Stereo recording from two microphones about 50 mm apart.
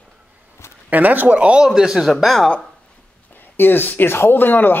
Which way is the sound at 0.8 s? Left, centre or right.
Right.